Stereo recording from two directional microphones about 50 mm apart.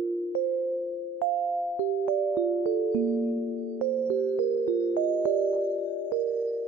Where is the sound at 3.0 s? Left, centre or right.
Right.